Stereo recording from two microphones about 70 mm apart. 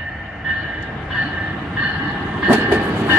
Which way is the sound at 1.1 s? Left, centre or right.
Centre.